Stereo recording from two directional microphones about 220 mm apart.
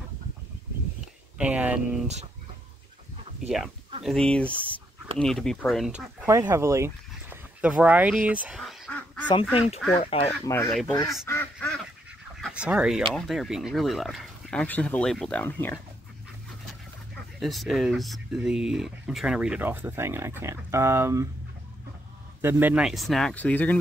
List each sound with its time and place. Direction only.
1.4 s speech: 5° right (ahead or behind)
3.4 s speech: centre (ahead or behind)
8.3 s duck: 5° right (ahead or behind)
9.9 s speech: 25° left (ahead or behind)
10.4 s speech: 15° left (ahead or behind)
10.7 s speech: centre (ahead or behind)
11.2 s duck: 10° left (ahead or behind)
12.4 s speech: centre (ahead or behind)
17.4 s speech: centre (ahead or behind)
22.4 s speech: 10° right (ahead or behind); by 23.8 s 5° left (ahead or behind)